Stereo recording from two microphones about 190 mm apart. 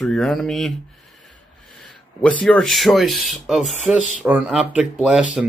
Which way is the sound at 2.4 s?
Centre (ahead or behind).